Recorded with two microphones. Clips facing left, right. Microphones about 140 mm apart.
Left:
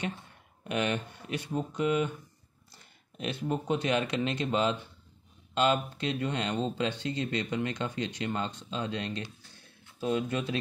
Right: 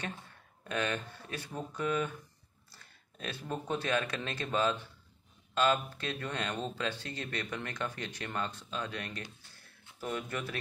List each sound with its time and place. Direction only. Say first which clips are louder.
0.7 s speech: left 4 dB; 20° left (ahead or behind)
3.2 s speech: left 6 dB; 20° left (ahead or behind)